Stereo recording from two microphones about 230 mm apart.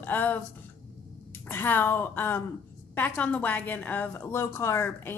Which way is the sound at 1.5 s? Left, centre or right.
Centre.